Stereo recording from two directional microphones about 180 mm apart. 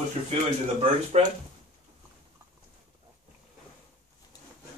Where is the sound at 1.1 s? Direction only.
40° right (ahead or behind).